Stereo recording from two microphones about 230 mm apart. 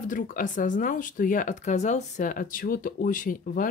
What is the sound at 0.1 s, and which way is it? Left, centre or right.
Speech, left.